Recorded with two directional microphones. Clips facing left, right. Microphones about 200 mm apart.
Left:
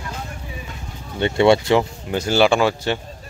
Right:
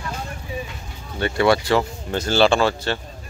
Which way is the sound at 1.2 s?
20° left (ahead or behind).